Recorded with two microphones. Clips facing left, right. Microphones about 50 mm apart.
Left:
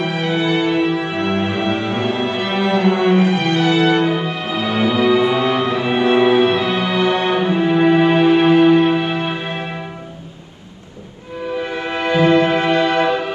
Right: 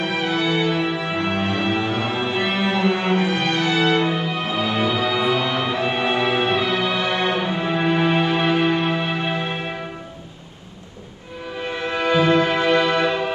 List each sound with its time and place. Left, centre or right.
0.2 s music: left
2.6 s music: right
3.1 s music: left
11.9 s music: left